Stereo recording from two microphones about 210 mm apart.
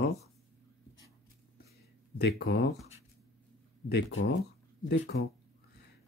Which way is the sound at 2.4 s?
50° left (ahead or behind).